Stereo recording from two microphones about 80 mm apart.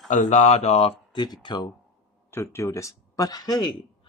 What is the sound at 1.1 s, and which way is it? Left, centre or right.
Speech, left.